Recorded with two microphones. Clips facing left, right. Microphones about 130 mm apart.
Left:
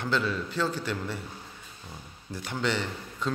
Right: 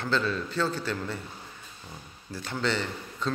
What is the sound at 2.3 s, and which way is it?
A man's voice, 15° left (ahead or behind).